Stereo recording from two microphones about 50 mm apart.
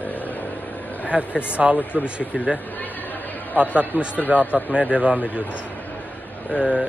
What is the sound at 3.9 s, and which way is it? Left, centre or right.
Speech, right.